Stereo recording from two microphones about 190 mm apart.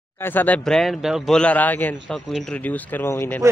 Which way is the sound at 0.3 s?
10° left (ahead or behind).